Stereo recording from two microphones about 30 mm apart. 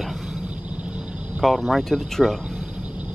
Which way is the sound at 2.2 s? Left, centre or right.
Centre.